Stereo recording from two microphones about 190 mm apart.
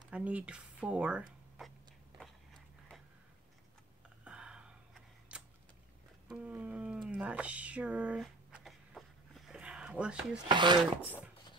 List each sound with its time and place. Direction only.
0.1 s speech: 5° right (ahead or behind)
4.2 s a sound: 5° right (ahead or behind)
10.5 s speech: 25° right (ahead or behind)